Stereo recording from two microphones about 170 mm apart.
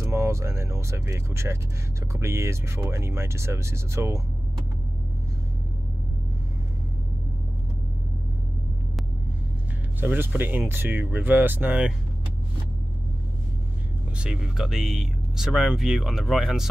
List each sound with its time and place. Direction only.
0.0 s speech: 15° right (ahead or behind)
9.9 s speech: 10° right (ahead or behind)
14.1 s speech: 5° right (ahead or behind)